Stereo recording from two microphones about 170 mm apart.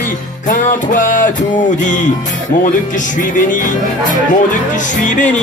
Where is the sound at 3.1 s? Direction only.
50° left (ahead or behind).